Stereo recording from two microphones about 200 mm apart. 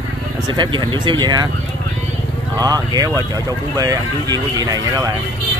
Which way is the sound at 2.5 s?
20° right (ahead or behind).